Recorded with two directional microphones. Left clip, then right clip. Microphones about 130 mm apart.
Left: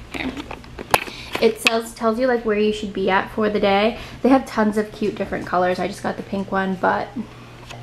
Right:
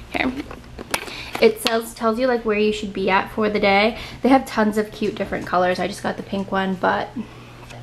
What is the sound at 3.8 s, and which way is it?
A woman's voice, 10° left (ahead or behind).